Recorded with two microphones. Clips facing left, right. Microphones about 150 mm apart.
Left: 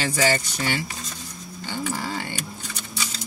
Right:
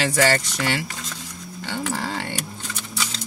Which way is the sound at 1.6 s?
70° right (ahead or behind).